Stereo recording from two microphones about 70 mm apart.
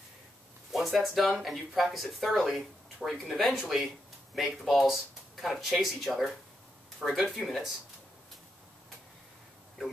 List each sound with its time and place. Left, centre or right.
0.7 s speech: centre